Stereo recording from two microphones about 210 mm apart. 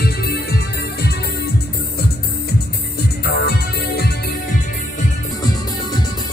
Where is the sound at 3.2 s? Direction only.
50° left (ahead or behind).